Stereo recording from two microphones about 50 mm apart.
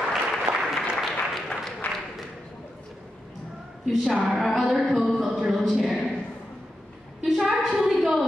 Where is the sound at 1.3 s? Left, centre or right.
Centre.